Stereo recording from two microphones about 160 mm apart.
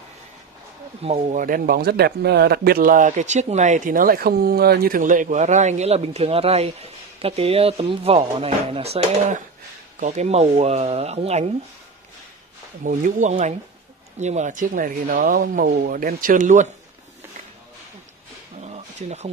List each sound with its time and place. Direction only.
1.0 s speech: 45° right (ahead or behind)
1.4 s speech: 60° right (ahead or behind); by 11.5 s 40° right (ahead or behind)
12.8 s speech: 55° right (ahead or behind)
18.6 s a sound: 45° right (ahead or behind)